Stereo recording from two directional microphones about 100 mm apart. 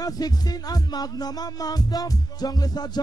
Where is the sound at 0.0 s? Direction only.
40° left (ahead or behind).